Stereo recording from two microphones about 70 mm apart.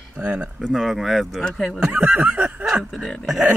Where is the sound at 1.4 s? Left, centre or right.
Centre.